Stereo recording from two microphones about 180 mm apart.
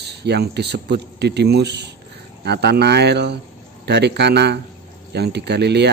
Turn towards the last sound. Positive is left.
turn(degrees=-70)  # may be behind; listen again after turning